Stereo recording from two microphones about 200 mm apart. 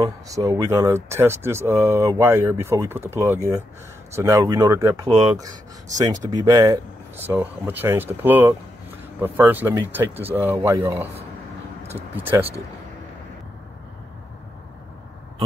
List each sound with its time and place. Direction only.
0.0 s speech: 15° right (ahead or behind)
6.3 s speech: 20° right (ahead or behind)
12.2 s speech: 10° right (ahead or behind)